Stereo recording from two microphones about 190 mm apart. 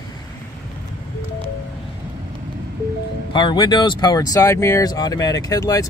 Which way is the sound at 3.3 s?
25° left (ahead or behind).